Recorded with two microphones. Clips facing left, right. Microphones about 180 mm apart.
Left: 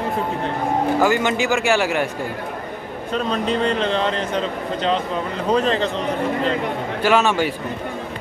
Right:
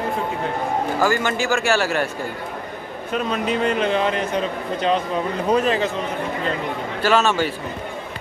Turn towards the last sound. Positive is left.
turn(degrees=15)  # may be behind; listen again after turning